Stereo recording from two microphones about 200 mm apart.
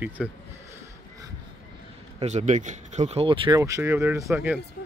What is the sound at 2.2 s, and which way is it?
Speech, 35° right (ahead or behind).